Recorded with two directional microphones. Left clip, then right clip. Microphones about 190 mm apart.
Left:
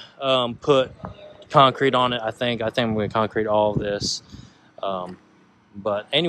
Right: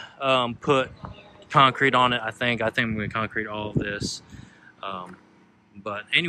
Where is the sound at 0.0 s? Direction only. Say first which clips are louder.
Left 1 dB; 10° left (ahead or behind).